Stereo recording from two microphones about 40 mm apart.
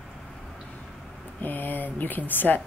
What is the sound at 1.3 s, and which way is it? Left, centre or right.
Speech, left.